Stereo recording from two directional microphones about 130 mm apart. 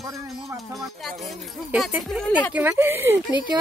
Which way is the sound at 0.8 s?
Centre (ahead or behind).